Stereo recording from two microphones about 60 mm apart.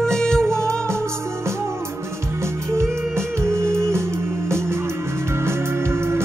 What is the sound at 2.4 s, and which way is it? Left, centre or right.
Music, right.